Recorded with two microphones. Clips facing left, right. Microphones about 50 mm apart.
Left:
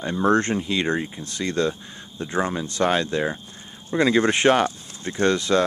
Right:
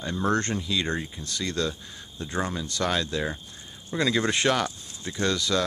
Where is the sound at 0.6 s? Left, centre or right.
Left.